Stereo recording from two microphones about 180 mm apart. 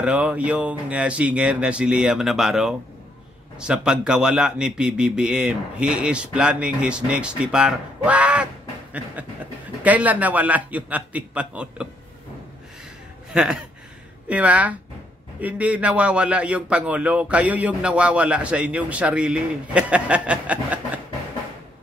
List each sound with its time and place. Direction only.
0.0 s a man's voice: 5° right (ahead or behind)
9.8 s a man's voice: 10° right (ahead or behind)
13.3 s a sound: 5° right (ahead or behind)
14.3 s a man's voice: 10° right (ahead or behind)